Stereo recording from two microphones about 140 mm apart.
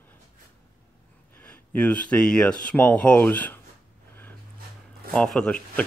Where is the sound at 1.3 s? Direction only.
10° left (ahead or behind).